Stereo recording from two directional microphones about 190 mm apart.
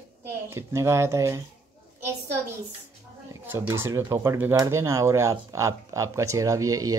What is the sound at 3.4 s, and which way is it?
Speech, 10° right (ahead or behind).